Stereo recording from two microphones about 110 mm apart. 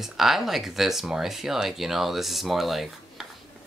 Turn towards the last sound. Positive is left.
turn(degrees=0)  # may be behind; listen again after turning